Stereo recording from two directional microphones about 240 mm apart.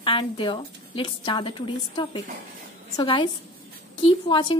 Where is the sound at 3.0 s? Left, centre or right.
Left.